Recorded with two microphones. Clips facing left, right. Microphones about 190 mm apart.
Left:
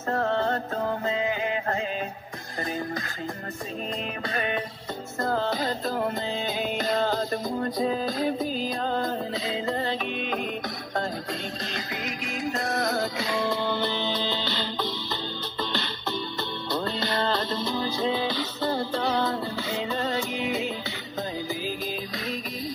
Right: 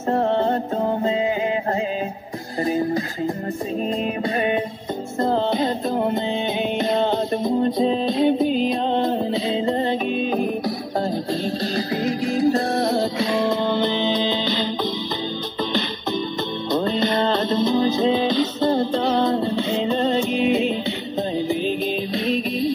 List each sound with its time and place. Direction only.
0.1 s music: 25° right (ahead or behind)
5.2 s music: 25° right (ahead or behind)
11.7 s music: 35° right (ahead or behind); by 14.7 s 15° right (ahead or behind)
16.7 s music: 20° right (ahead or behind)